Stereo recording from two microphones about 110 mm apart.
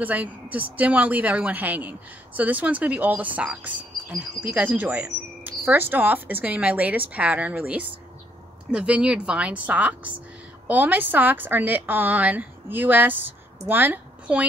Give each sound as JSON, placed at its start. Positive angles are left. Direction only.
{"t": 0.0, "sound": "a woman's voice", "side_deg": -15}